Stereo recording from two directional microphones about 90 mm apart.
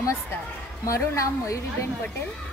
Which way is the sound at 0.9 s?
35° left (ahead or behind).